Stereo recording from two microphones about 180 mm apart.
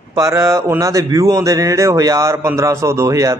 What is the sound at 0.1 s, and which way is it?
A man's voice, 15° right (ahead or behind).